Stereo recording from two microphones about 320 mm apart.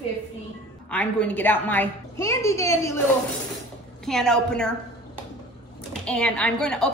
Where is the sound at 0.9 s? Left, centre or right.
Centre.